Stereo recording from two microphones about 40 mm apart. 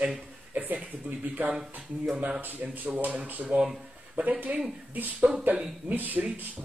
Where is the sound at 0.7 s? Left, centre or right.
Right.